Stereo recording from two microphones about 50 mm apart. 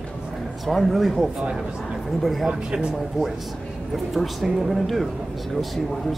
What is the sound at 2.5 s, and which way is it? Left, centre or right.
Speech, centre.